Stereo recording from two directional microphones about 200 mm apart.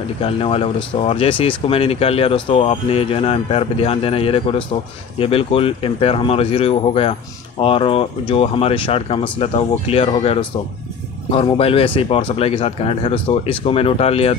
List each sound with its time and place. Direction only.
0.2 s speech: 30° left (ahead or behind)